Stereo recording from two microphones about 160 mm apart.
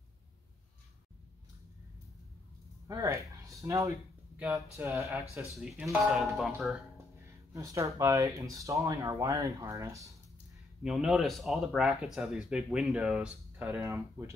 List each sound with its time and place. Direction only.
2.9 s speech: 20° right (ahead or behind); by 6.8 s centre (ahead or behind)
7.5 s speech: 20° right (ahead or behind)
10.8 s speech: 5° right (ahead or behind)